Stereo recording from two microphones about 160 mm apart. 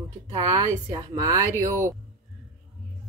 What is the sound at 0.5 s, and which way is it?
Speech, 20° right (ahead or behind).